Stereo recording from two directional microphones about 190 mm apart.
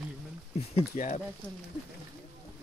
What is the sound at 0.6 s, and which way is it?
Speech, 35° left (ahead or behind).